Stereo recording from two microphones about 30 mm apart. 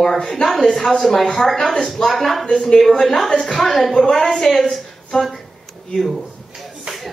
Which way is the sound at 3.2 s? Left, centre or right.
Left.